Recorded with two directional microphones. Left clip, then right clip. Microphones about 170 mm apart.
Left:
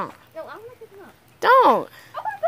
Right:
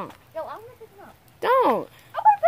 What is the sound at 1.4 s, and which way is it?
Speech, 5° right (ahead or behind).